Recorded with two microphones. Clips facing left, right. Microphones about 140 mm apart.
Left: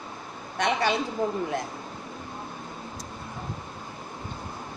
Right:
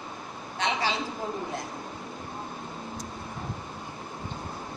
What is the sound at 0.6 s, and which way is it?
Speech, 55° left (ahead or behind).